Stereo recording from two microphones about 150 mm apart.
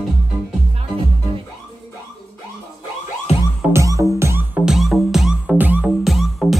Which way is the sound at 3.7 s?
20° right (ahead or behind).